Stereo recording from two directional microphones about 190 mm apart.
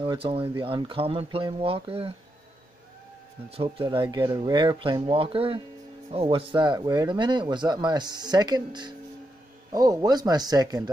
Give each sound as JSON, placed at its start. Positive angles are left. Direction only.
{"t": 0.0, "sound": "speech", "side_deg": -25}
{"t": 3.4, "sound": "speech", "side_deg": -30}